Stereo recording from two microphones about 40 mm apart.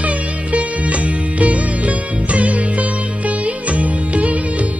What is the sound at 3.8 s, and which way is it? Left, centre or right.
Music, right.